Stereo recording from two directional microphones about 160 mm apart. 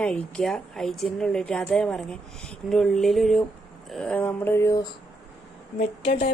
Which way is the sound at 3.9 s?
10° left (ahead or behind).